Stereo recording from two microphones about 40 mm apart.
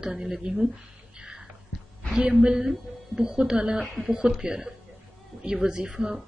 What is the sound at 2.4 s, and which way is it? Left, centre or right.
Speech, centre.